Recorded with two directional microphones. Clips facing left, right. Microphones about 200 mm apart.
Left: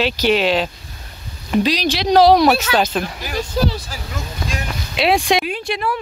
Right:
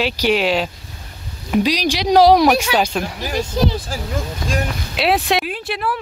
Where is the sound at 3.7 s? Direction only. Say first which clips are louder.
Right 4 dB; 50° right (ahead or behind).